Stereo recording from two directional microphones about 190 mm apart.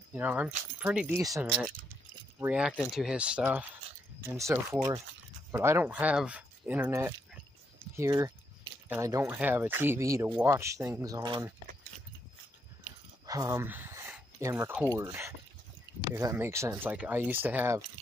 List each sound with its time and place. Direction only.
0.1 s speech: 10° right (ahead or behind)
4.6 s speech: 5° right (ahead or behind); by 11.4 s 20° right (ahead or behind)
12.8 s a sound: 15° right (ahead or behind)
16.2 s speech: 15° right (ahead or behind)